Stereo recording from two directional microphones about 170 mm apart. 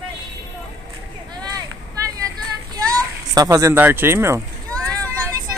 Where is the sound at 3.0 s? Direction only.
20° right (ahead or behind).